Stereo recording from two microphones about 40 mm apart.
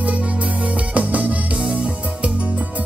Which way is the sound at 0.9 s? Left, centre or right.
Right.